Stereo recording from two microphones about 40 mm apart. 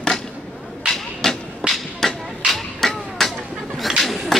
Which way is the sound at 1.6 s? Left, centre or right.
Right.